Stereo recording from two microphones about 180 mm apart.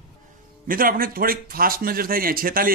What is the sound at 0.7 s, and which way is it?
A man's voice, 50° right (ahead or behind).